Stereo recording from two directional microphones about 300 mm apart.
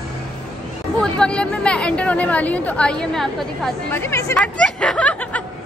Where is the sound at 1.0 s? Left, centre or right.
Centre.